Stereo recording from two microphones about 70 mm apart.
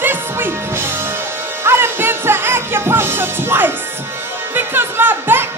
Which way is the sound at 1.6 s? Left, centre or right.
Right.